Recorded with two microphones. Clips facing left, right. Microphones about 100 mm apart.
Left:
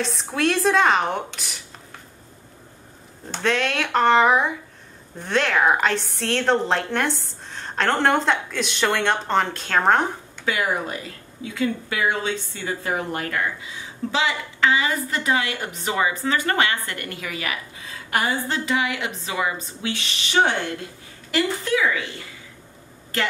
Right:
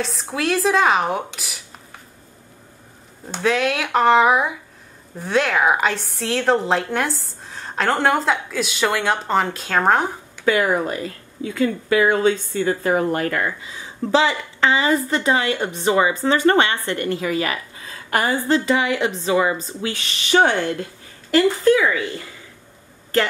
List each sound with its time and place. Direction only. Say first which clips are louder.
0.0 s a woman's voice: left 1 dB; centre (ahead or behind)
3.3 s a woman's voice: right 3 dB; 5° right (ahead or behind)
10.5 s speech: right 6 dB; 45° right (ahead or behind)
14.1 s a woman's voice: right 6 dB; 35° right (ahead or behind)